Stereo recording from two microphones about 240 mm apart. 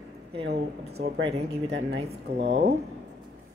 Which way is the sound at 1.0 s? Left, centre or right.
Right.